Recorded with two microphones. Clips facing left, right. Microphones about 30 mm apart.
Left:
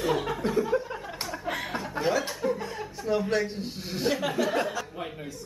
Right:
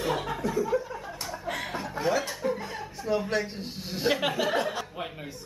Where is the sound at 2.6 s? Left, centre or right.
Centre.